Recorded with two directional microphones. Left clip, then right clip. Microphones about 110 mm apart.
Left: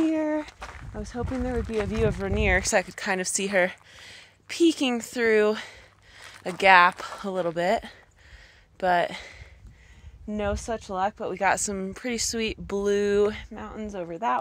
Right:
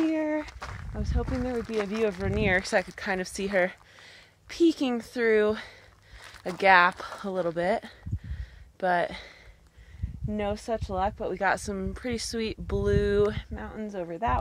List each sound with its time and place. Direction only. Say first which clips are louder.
0.0 s a woman's voice: left 2 dB; 60° left (ahead or behind); by 9.3 s 30° left (ahead or behind)
10.3 s a woman's voice: left 1 dB; 15° left (ahead or behind)